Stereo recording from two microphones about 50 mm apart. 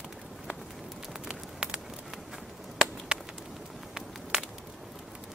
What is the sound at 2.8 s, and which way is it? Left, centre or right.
Chop, centre.